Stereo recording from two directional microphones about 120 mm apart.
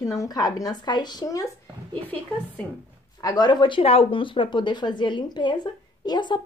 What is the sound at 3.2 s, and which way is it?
Speech, 35° left (ahead or behind).